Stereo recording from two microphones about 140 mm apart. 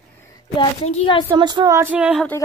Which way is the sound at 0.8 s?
35° left (ahead or behind).